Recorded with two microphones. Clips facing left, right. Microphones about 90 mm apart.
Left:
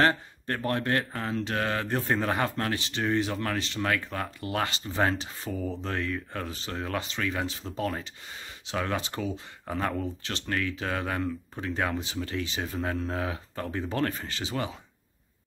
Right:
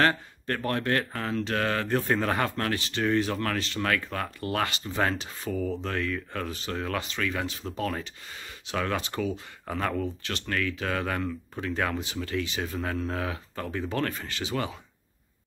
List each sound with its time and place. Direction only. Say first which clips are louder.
0.0 s speech: even; 20° left (ahead or behind)